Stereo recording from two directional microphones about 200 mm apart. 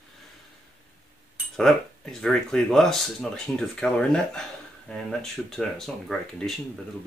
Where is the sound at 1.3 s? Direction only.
Centre (ahead or behind).